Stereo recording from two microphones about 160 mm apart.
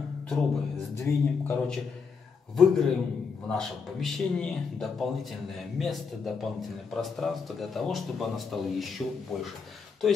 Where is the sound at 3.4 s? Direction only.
5° left (ahead or behind).